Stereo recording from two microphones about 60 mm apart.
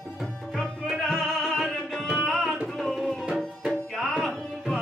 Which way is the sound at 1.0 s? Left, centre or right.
Centre.